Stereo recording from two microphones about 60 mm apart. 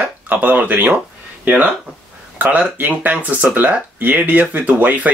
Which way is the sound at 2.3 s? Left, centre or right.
Right.